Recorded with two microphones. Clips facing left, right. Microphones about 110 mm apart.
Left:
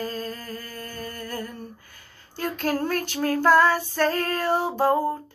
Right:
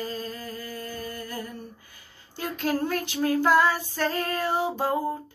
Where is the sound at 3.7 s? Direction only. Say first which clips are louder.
Left 4 dB; 50° left (ahead or behind).